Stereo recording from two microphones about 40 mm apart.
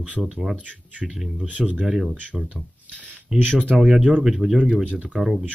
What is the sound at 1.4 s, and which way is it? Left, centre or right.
Speech, right.